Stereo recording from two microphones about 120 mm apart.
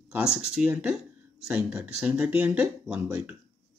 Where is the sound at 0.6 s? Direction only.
10° right (ahead or behind).